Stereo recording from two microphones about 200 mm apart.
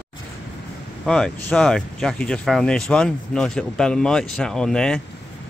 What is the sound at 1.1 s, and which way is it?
Speech, 5° left (ahead or behind).